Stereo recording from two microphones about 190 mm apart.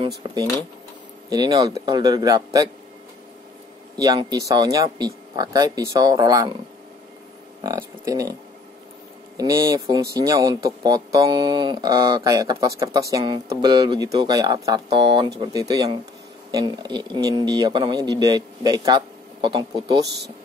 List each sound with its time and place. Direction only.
1.3 s speech: 20° right (ahead or behind)
4.0 s speech: 20° right (ahead or behind)
7.6 s speech: 15° right (ahead or behind)
9.4 s speech: 20° right (ahead or behind)